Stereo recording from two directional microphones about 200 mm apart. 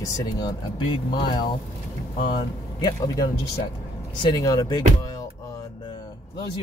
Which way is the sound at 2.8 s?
20° left (ahead or behind).